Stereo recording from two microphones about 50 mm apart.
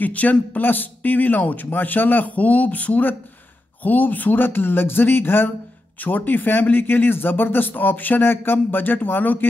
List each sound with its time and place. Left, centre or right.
0.0 s a man's voice: left
5.9 s speech: left